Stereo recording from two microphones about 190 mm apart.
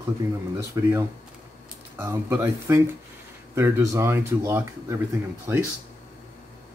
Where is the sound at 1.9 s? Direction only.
15° right (ahead or behind).